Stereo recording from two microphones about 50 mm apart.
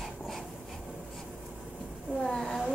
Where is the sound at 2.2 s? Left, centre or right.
Centre.